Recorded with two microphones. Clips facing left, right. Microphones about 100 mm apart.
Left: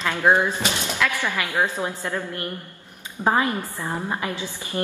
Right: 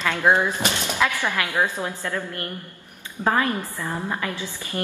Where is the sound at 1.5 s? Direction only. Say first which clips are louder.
Even; 20° left (ahead or behind).